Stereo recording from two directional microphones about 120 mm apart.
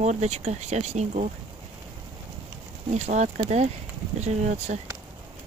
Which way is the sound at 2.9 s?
80° right.